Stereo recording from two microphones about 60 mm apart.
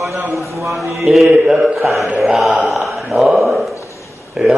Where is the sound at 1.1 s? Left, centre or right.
Centre.